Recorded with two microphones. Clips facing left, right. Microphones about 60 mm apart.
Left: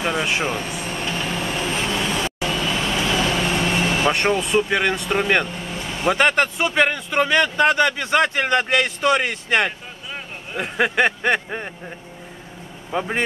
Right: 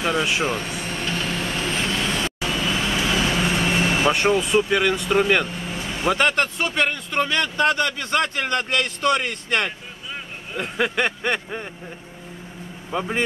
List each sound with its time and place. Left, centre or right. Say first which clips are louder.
0.0 s vehicle: even; centre
4.6 s a man's voice: even; centre
5.7 s vehicle: left 1 dB; centre
6.1 s a man's voice: left 4 dB; centre
11.3 s speech: left 4 dB; left
12.9 s a man's voice: left 2 dB; centre